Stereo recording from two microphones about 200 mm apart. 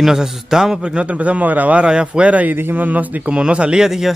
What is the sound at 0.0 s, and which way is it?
A man's voice, centre (ahead or behind).